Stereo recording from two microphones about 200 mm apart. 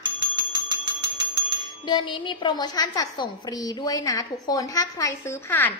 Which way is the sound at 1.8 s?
25° left (ahead or behind).